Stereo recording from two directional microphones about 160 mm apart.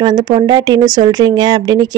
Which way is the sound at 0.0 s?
25° right (ahead or behind).